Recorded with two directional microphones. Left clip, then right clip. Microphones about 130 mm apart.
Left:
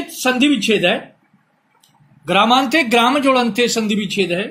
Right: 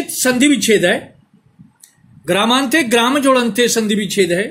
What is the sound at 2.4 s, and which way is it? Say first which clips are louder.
Speech: left 1 dB; 40° right (ahead or behind).